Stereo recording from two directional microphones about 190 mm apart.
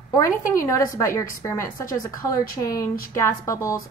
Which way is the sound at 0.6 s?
15° left (ahead or behind).